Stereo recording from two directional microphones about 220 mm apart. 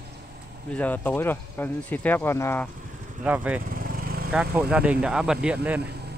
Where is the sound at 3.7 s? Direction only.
40° right (ahead or behind).